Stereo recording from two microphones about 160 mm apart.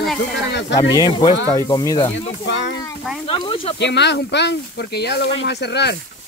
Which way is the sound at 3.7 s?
90° left.